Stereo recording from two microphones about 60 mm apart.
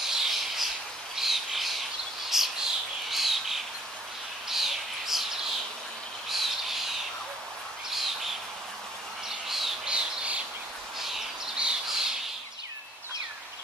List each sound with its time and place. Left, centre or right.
0.0 s a sound: centre
1.1 s bird: centre
7.9 s bird: centre
9.5 s bird: centre
9.8 s squawk: centre
11.0 s bird: centre